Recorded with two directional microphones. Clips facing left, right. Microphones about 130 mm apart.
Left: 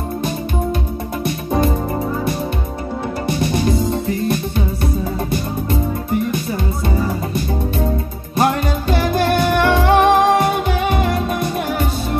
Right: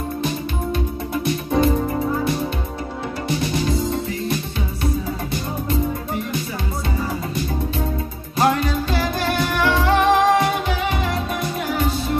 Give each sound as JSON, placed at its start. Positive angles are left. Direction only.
{"t": 1.2, "sound": "music", "side_deg": 50}
{"t": 8.4, "sound": "music", "side_deg": 50}